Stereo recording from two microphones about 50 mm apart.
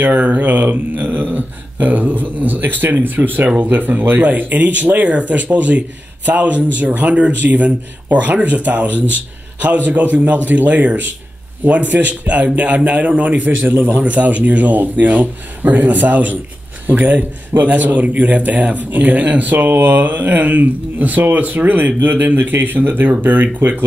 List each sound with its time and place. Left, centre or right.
0.0 s a man's voice: right
17.6 s speech: right